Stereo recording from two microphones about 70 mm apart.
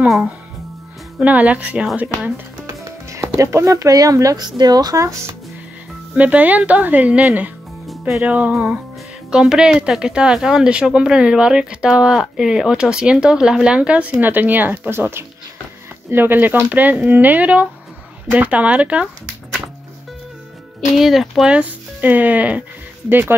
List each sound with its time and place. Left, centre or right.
1.2 s speech: right
2.6 s music: right
3.3 s speech: right
4.4 s speech: right
5.0 s speech: right
6.1 s speech: right
9.3 s a woman's voice: centre
20.9 s speech: centre
21.5 s speech: right